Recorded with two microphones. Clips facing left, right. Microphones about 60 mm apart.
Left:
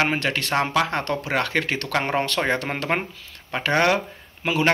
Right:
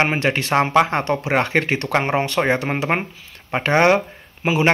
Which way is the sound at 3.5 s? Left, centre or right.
Right.